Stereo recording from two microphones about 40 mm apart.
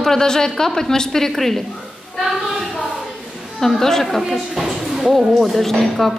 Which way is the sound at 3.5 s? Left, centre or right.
Centre.